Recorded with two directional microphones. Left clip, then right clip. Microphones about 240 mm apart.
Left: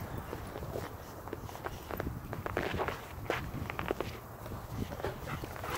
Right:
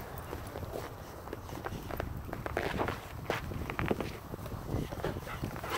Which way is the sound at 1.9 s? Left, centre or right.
Right.